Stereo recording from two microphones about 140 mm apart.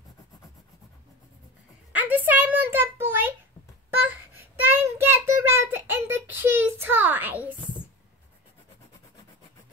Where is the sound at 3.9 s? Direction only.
15° right (ahead or behind).